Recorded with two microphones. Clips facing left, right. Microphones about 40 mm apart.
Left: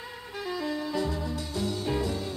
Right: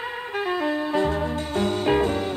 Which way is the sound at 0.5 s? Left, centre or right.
Right.